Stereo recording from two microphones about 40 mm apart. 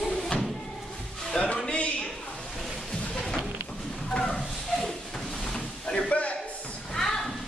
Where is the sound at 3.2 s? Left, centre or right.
Centre.